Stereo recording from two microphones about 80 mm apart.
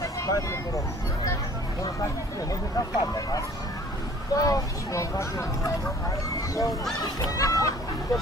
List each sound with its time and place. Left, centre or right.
0.0 s vehicle: left
3.0 s speech: left